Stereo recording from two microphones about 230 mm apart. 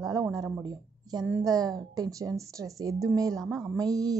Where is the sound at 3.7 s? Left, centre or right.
Centre.